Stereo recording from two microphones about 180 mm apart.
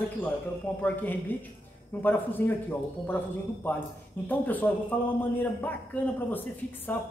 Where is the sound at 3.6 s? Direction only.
10° left (ahead or behind).